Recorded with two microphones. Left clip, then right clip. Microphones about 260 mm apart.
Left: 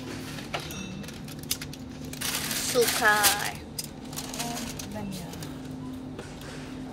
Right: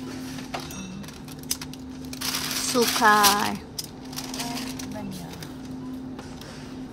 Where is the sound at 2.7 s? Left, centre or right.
Right.